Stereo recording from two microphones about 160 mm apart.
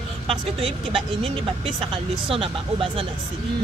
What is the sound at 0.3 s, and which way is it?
Speech, 35° right (ahead or behind).